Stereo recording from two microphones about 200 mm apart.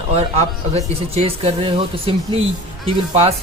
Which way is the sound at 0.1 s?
30° right (ahead or behind).